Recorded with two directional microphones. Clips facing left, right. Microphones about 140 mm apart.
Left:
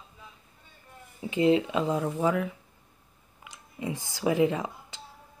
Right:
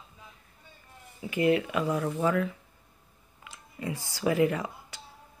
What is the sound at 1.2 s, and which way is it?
Speech, 25° left (ahead or behind).